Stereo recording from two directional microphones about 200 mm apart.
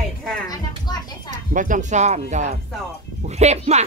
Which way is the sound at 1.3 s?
40° right (ahead or behind).